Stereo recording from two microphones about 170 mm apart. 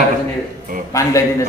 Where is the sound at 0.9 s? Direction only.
20° left (ahead or behind).